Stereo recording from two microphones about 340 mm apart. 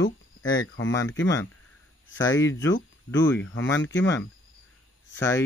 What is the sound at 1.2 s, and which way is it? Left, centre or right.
Speech, centre.